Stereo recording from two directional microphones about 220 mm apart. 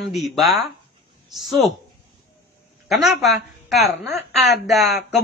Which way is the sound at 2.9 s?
Centre (ahead or behind).